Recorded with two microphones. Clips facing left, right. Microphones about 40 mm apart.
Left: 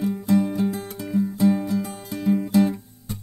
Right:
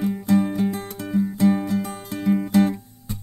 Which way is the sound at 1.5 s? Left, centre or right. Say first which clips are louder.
Right 1 dB; right.